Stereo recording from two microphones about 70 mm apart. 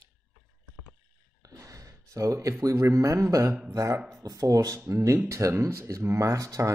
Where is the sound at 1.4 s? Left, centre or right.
Right.